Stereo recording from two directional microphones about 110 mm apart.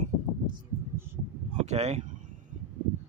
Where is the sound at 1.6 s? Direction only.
90° right.